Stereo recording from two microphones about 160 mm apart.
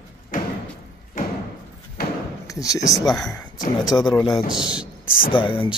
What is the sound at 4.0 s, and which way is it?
Speech, 25° left (ahead or behind).